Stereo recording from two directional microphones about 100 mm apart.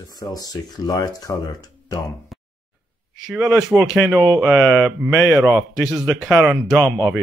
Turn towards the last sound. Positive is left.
turn(degrees=-30)  # may be behind; listen again after turning